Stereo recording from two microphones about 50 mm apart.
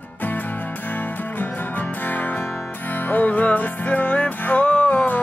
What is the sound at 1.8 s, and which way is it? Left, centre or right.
Music, left.